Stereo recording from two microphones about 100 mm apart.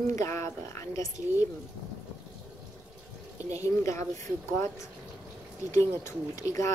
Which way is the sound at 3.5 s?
30° left (ahead or behind).